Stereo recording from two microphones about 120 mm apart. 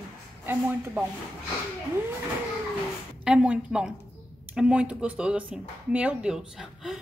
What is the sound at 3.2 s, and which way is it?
Speech, 10° right (ahead or behind).